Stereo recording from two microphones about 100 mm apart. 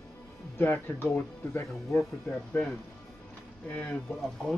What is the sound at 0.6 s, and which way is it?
Speech, 20° left (ahead or behind).